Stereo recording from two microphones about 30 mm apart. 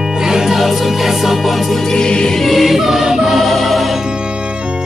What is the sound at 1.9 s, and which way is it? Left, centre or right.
Choir, left.